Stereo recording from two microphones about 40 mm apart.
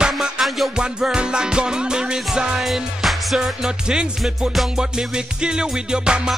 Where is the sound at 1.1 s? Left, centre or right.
Right.